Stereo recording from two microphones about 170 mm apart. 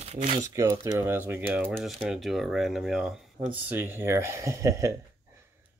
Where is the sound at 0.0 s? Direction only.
40° right (ahead or behind).